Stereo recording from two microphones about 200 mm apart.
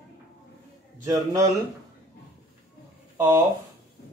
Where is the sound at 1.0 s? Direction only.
15° right (ahead or behind).